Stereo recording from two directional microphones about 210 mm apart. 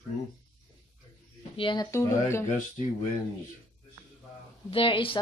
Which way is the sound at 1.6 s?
20° left (ahead or behind).